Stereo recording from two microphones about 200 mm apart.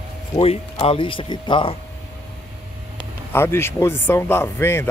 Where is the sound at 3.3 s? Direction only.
10° left (ahead or behind).